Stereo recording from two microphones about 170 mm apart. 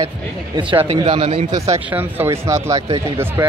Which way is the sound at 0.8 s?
35° right (ahead or behind).